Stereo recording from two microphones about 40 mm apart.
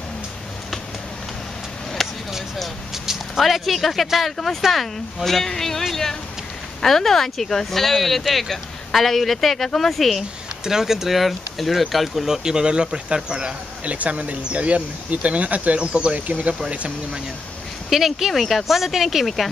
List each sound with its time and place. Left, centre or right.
2.0 s a sound: centre
3.3 s speech: centre
10.6 s speech: centre
12.3 s speech: centre
13.9 s speech: right
15.8 s speech: right
17.8 s speech: centre